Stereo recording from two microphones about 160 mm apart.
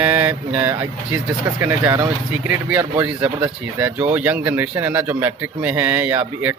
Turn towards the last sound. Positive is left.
turn(degrees=-10)  # may be behind; listen again after turning